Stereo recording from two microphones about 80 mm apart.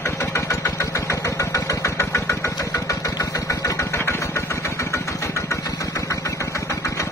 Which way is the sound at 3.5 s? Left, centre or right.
Left.